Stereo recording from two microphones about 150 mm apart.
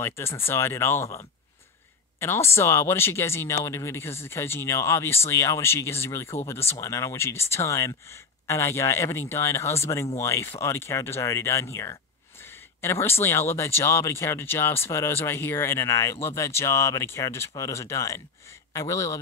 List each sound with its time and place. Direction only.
0.0 s speech: 15° left (ahead or behind)